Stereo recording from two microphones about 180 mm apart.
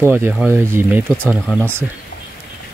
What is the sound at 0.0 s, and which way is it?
Speech, 15° right (ahead or behind).